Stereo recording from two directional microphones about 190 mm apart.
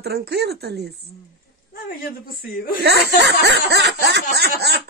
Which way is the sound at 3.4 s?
60° right (ahead or behind).